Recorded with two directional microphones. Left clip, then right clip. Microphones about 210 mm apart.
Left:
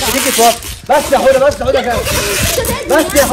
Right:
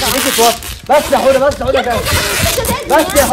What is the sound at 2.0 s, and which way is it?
Speech, 15° right (ahead or behind).